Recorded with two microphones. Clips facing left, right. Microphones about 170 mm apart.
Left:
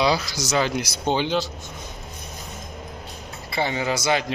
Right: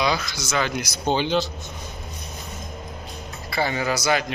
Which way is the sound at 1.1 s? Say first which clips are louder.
Right 1 dB; 10° left (ahead or behind).